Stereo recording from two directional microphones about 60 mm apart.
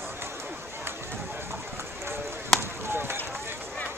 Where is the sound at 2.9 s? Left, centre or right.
Right.